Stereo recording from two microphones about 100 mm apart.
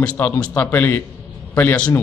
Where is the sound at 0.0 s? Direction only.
15° left (ahead or behind).